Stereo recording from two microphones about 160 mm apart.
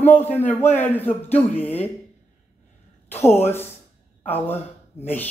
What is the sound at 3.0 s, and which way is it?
A woman's voice, 15° left (ahead or behind).